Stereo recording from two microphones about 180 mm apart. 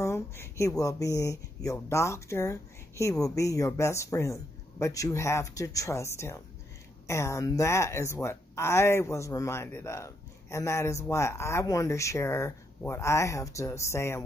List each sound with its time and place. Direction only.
0.0 s speech: 15° left (ahead or behind)